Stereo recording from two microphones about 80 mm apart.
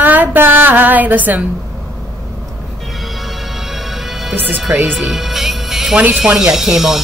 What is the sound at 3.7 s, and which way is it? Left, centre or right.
Music, centre.